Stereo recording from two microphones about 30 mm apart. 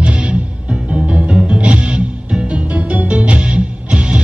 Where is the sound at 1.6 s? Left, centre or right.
Right.